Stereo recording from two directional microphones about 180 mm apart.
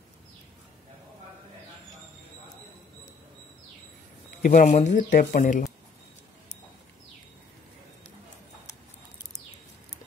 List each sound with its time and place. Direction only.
4.4 s speech: 45° left (ahead or behind)